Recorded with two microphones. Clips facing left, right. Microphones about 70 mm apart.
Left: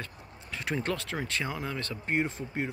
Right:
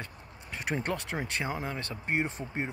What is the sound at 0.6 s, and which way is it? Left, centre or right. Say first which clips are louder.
Speech: left 1 dB; right.